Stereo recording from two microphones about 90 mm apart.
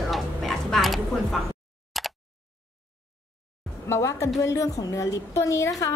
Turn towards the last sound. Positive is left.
turn(degrees=35)  # may be behind; listen again after turning